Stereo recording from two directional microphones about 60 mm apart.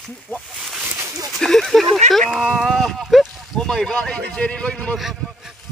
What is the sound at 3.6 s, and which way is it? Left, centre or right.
Speech, centre.